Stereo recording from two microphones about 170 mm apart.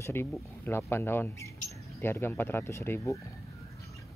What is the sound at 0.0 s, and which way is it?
Speech, 15° left (ahead or behind).